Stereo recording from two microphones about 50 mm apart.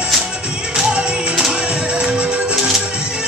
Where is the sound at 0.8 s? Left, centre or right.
Centre.